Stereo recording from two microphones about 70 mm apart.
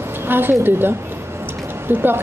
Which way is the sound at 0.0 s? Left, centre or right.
Right.